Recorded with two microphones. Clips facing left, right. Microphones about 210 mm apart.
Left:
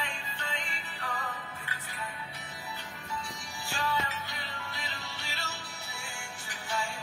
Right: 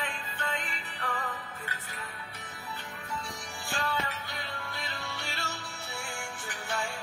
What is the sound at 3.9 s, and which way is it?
Music, 45° right (ahead or behind).